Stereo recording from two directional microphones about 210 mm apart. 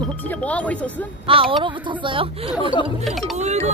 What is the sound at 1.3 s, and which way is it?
Speech, 25° right (ahead or behind).